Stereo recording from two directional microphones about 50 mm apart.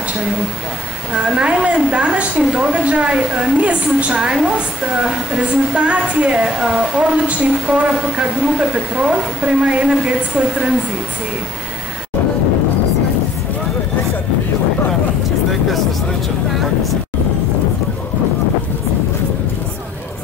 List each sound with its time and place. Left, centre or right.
1.1 s a woman's voice: right